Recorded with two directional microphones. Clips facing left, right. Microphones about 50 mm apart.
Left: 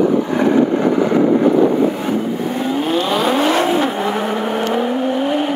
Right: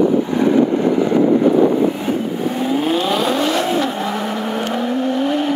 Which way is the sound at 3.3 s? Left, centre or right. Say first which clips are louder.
Left 2 dB; left.